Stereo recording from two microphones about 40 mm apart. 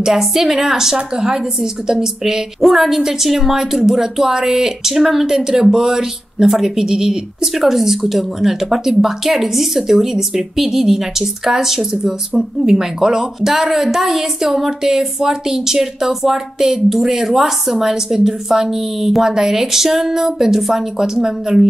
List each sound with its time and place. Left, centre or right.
0.0 s a woman's voice: centre